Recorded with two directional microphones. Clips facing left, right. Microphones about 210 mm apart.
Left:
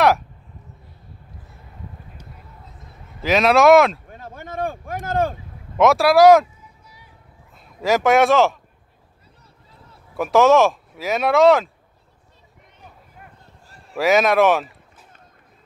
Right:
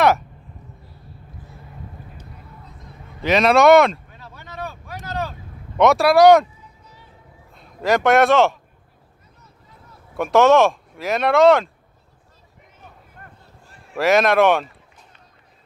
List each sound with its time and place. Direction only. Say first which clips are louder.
3.2 s speech: even; centre (ahead or behind)
4.1 s a sound: left 6 dB; 50° left (ahead or behind)
5.8 s speech: even; centre (ahead or behind)
7.5 s speech: even; centre (ahead or behind)
10.1 s speech: even; centre (ahead or behind)
13.2 s a sound: even; 10° left (ahead or behind)
13.9 s speech: even; centre (ahead or behind)